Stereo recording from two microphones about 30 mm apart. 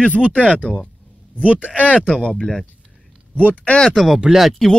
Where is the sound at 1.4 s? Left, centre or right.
Right.